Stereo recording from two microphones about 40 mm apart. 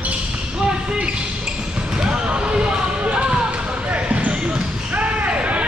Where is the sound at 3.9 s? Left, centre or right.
Right.